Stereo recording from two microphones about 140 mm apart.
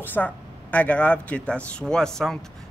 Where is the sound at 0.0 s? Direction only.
10° left (ahead or behind).